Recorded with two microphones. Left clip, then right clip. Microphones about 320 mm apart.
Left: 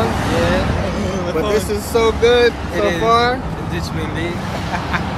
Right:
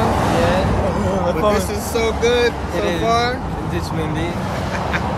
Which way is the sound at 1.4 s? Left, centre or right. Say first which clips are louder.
Even; centre.